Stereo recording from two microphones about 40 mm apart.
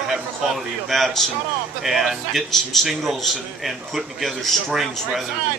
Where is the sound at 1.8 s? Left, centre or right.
Centre.